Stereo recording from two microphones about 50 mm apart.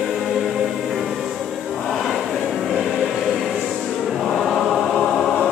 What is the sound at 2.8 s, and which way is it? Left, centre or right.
Music, centre.